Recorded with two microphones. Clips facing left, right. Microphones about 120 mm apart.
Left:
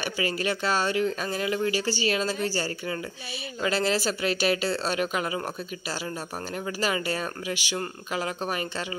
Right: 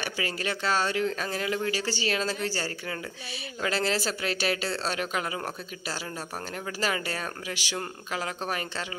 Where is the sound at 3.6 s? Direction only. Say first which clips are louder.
Left 3 dB; 5° left (ahead or behind).